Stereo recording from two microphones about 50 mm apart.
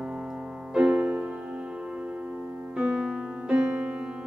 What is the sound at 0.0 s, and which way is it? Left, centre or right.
Music, centre.